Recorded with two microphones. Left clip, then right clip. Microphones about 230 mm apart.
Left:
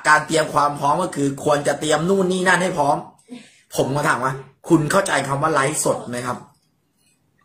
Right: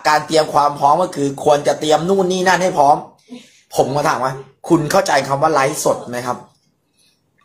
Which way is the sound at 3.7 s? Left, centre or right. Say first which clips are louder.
Right 4 dB; centre.